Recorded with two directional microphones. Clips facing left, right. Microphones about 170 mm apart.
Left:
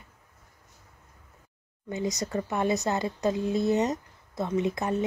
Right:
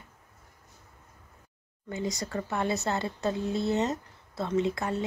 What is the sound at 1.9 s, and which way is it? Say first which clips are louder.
Speech: left 3 dB; 20° left (ahead or behind).